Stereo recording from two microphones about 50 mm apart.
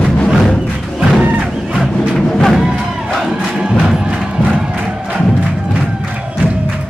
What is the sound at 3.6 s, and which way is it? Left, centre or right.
Music, centre.